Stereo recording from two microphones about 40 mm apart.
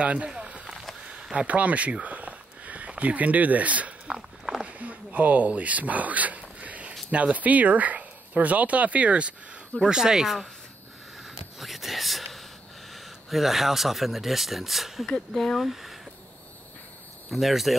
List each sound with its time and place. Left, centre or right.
0.0 s speech: right
0.3 s a sound: right
1.5 s speech: right
4.1 s a sound: centre
4.6 s a sound: right
7.1 s speech: right
9.8 s speech: centre
11.6 s a sound: centre
12.9 s speech: centre
15.3 s speech: centre
15.6 s speech: centre
17.3 s speech: centre